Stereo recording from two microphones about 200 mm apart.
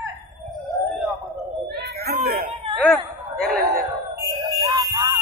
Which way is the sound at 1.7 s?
50° right (ahead or behind).